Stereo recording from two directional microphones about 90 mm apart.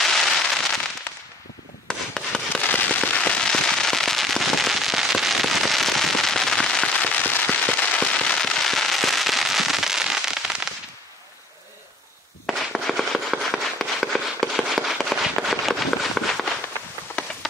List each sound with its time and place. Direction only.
0.0 s fireworks: 5° left (ahead or behind)
1.1 s whip: 20° left (ahead or behind)
1.9 s rub: 10° left (ahead or behind)
2.6 s fireworks: 20° left (ahead or behind); by 10.7 s 5° right (ahead or behind)
12.4 s a sound: centre (ahead or behind)